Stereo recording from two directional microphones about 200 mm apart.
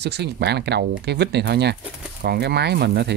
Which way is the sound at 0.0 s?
55° right (ahead or behind).